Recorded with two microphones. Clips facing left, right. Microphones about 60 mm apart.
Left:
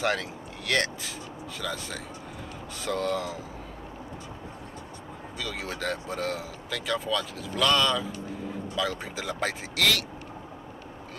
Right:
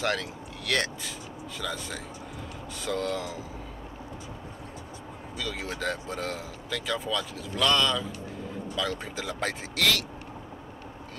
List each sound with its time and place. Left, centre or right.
0.7 s speech: centre
5.4 s speech: centre